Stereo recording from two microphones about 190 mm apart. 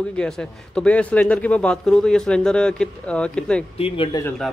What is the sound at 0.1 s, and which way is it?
Speech, 5° left (ahead or behind).